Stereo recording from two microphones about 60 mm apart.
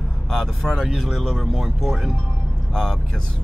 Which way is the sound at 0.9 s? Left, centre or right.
Centre.